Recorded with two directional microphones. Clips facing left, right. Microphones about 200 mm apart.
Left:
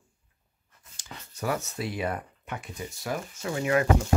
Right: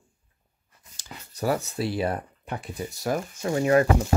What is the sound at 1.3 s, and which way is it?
Speech, 35° right (ahead or behind).